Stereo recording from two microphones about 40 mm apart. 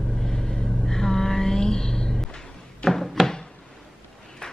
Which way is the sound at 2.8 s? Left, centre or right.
Left.